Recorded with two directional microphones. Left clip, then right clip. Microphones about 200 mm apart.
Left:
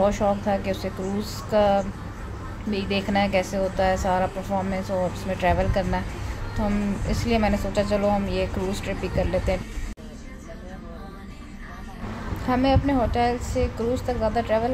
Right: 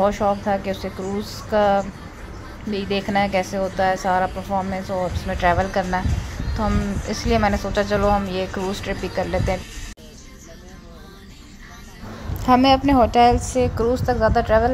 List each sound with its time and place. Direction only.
0.0 s a woman's voice: 10° right (ahead or behind)
12.4 s a woman's voice: 40° right (ahead or behind); by 14.7 s 25° right (ahead or behind)